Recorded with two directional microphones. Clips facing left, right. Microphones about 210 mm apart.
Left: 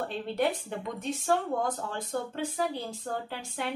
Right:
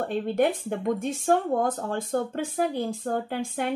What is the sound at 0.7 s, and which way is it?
Speech, 50° right (ahead or behind).